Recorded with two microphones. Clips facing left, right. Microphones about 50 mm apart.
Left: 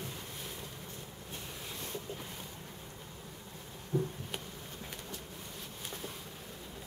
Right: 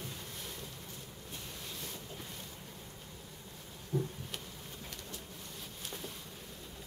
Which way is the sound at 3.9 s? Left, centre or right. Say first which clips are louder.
Left 2 dB; left.